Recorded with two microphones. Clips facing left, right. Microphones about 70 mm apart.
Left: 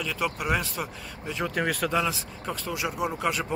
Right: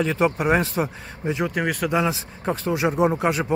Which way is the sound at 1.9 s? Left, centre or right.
Right.